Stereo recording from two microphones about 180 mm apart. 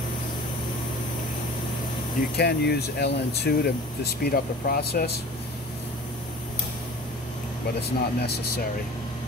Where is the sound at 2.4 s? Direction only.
65° left (ahead or behind).